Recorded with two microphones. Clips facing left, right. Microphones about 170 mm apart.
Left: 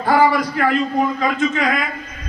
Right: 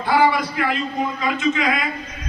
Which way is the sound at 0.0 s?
45° left (ahead or behind).